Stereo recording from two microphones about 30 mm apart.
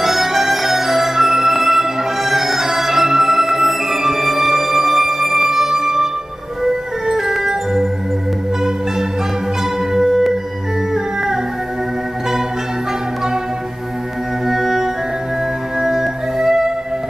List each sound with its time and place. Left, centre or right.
0.0 s music: centre
9.9 s music: centre
14.5 s music: centre